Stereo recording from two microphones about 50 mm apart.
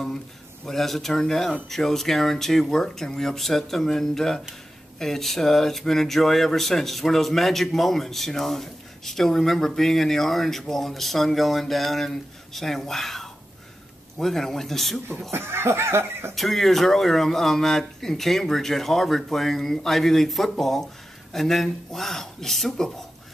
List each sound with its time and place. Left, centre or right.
0.7 s speech: centre
15.3 s cough: right
16.3 s speech: centre